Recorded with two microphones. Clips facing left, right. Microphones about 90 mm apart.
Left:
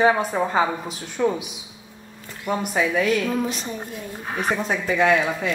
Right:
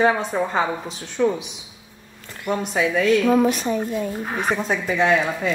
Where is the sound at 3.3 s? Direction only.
70° right (ahead or behind); by 4.0 s 90° right.